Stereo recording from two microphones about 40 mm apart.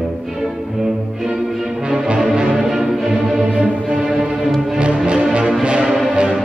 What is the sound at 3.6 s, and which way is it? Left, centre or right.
Music, right.